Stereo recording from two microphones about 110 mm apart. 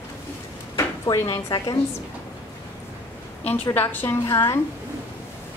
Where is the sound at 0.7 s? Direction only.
30° left (ahead or behind).